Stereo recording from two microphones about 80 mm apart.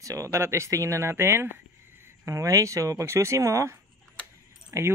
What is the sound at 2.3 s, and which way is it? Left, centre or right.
Speech, right.